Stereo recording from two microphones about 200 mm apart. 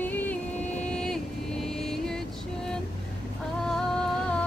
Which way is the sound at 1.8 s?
Centre (ahead or behind).